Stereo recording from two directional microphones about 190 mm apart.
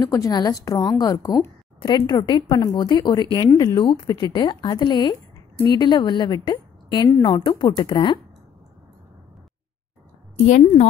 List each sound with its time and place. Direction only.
0.0 s speech: 15° left (ahead or behind)
10.4 s speech: 35° left (ahead or behind)